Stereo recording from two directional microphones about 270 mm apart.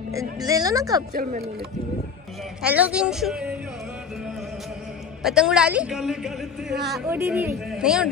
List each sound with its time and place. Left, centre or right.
0.1 s speech: centre
1.1 s speech: right
2.6 s speech: centre
5.2 s speech: centre